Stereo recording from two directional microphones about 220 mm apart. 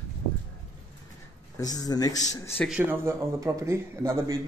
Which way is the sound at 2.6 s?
5° right (ahead or behind).